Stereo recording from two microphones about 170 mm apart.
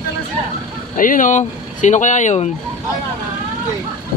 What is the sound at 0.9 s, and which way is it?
Speech, 50° left (ahead or behind).